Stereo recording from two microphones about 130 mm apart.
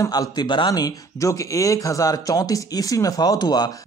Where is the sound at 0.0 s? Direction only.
30° left (ahead or behind).